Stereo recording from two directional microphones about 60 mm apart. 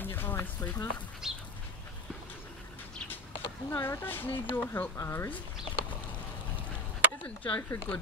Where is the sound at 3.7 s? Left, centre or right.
Left.